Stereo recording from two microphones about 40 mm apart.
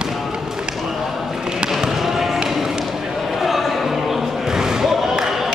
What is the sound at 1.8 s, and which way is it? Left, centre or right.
Basketball bounce, centre.